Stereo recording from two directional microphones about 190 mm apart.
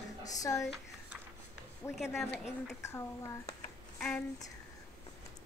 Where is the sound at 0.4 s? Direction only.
15° left (ahead or behind).